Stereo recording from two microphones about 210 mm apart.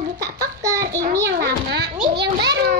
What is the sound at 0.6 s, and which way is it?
Speech, 15° right (ahead or behind).